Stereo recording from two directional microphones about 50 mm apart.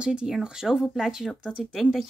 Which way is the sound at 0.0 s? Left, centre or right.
Right.